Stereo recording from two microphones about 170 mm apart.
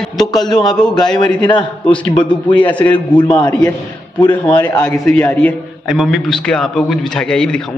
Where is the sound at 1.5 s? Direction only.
30° left (ahead or behind).